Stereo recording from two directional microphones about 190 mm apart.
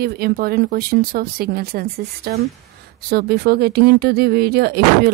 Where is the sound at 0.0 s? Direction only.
55° right (ahead or behind).